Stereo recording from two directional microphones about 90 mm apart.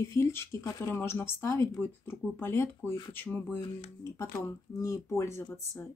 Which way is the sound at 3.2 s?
15° left (ahead or behind).